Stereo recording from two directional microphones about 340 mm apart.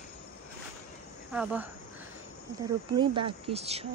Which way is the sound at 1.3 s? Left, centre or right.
Centre.